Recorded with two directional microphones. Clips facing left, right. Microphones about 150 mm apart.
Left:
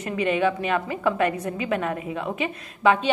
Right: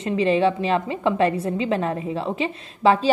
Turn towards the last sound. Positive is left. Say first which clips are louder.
# right 2 dB
turn(degrees=-30)  # may be behind; listen again after turning